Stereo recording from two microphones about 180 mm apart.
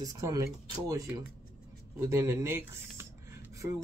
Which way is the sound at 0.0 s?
20° right (ahead or behind).